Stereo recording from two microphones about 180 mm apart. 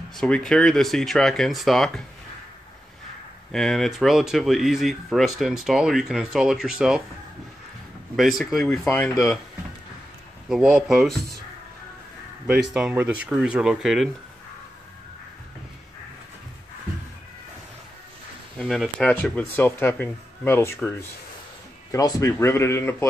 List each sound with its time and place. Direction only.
0.1 s speech: 5° left (ahead or behind)
3.5 s speech: centre (ahead or behind)
8.2 s speech: centre (ahead or behind)
10.5 s speech: 5° right (ahead or behind)
12.4 s speech: 5° right (ahead or behind)
18.6 s speech: centre (ahead or behind)
21.9 s speech: 15° left (ahead or behind)